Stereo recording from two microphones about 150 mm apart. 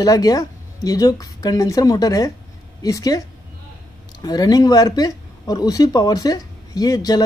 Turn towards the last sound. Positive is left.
turn(degrees=25)  # may be behind; listen again after turning